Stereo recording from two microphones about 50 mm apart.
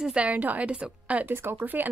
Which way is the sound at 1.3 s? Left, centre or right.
Right.